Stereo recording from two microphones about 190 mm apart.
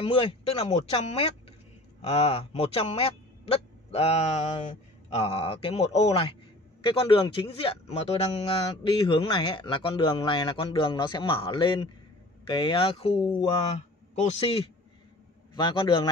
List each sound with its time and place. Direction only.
0.0 s a man's voice: 30° left (ahead or behind)